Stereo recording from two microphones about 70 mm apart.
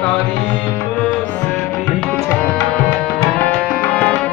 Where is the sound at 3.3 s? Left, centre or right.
Centre.